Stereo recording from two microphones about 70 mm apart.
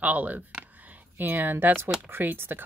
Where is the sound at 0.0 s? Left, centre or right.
Right.